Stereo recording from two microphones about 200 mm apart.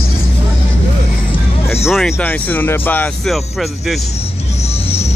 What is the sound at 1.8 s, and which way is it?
Speech, centre (ahead or behind).